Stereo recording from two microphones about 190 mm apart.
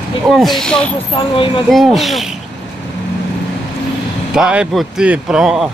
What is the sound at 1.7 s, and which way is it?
Speech, centre (ahead or behind).